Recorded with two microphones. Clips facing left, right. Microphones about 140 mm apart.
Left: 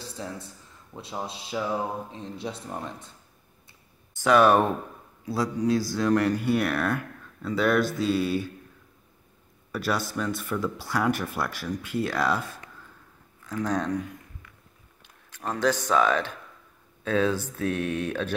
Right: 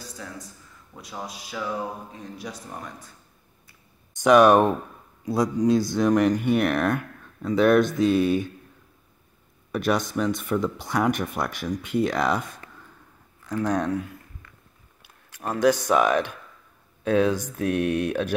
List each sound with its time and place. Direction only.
0.0 s a sound: 30° left (ahead or behind)
0.9 s speech: 25° left (ahead or behind)
4.1 s speech: 20° right (ahead or behind)
9.7 s speech: 20° right (ahead or behind)
15.0 s a sound: 10° right (ahead or behind)
15.6 s speech: 15° right (ahead or behind)